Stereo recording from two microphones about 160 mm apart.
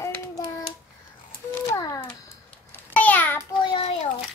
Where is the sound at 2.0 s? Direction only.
10° left (ahead or behind).